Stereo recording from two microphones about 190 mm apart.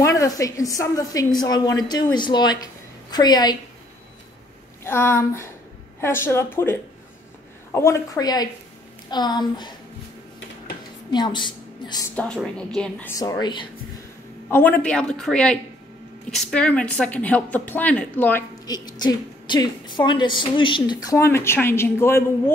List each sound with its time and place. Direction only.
0.0 s a woman's voice: 15° left (ahead or behind)
4.8 s a woman's voice: 10° left (ahead or behind)
11.1 s a woman's voice: 25° left (ahead or behind)
12.2 s a woman's voice: 5° left (ahead or behind)
13.2 s a woman's voice: 20° left (ahead or behind)
14.5 s a woman's voice: 10° left (ahead or behind)
18.7 s a woman's voice: 20° left (ahead or behind)